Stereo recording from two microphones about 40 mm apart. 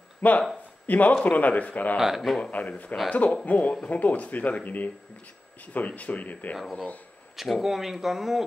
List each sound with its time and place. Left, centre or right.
0.2 s a man's voice: left
2.0 s speech: centre
2.6 s speech: left
7.3 s speech: centre